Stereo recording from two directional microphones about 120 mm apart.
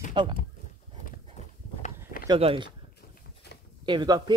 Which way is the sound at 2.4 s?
45° right (ahead or behind).